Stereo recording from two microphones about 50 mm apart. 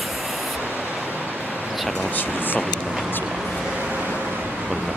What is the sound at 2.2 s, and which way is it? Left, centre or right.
Speech, left.